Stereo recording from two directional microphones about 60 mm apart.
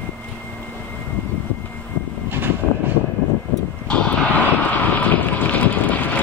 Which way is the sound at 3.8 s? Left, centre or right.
Left.